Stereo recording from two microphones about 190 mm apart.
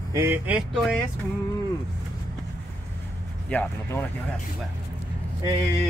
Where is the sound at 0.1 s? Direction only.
10° right (ahead or behind).